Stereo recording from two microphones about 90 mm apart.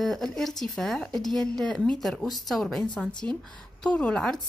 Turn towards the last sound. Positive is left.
turn(degrees=10)  # may be behind; listen again after turning